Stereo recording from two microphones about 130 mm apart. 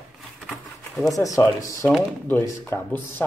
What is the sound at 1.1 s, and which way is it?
A man's voice, 25° left (ahead or behind).